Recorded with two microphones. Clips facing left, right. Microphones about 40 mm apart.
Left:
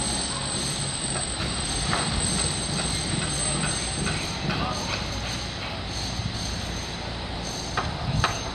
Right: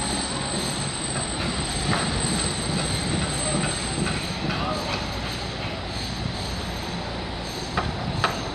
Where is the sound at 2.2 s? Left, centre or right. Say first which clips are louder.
Right 2 dB; right.